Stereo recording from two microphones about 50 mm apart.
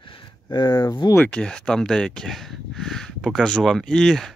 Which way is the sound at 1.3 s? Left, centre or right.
Centre.